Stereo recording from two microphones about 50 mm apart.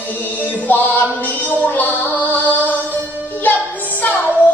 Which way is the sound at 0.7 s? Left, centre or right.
Left.